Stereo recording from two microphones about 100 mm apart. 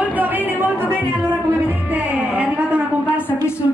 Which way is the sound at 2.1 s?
15° right (ahead or behind).